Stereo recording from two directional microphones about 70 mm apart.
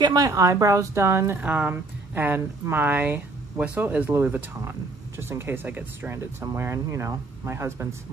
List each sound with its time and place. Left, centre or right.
0.0 s speech: right
0.3 s speech: right
1.4 s speech: right
3.5 s speech: centre; by 7.9 s right